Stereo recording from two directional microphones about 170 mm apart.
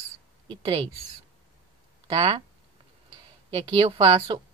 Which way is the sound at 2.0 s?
25° right (ahead or behind).